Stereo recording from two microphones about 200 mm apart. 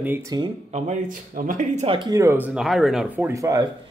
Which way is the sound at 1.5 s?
40° right (ahead or behind).